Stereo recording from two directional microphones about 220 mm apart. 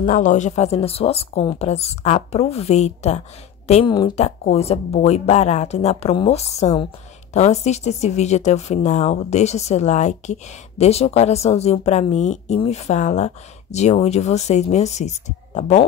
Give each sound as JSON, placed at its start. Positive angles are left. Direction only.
{"t": 0.0, "sound": "a woman's voice", "side_deg": 35}